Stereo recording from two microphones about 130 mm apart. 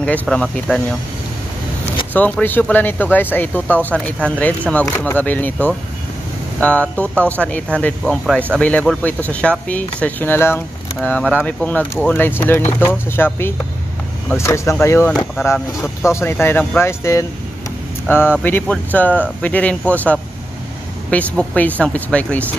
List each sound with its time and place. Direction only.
0.0 s speech: 10° left (ahead or behind)
2.1 s speech: 10° left (ahead or behind)